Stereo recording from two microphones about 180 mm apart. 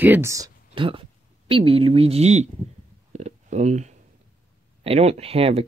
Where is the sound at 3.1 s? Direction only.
40° right (ahead or behind).